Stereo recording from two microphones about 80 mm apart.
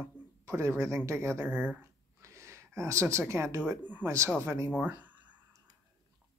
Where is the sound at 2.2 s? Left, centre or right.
Right.